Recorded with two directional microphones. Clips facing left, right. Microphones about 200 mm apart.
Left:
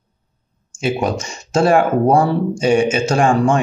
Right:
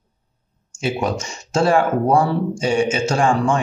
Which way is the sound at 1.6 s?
20° left (ahead or behind).